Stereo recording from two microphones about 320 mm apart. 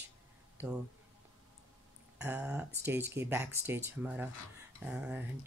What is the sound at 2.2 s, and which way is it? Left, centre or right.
Speech, centre.